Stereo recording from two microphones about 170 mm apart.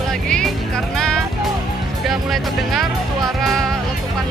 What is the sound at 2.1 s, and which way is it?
Speech, centre (ahead or behind).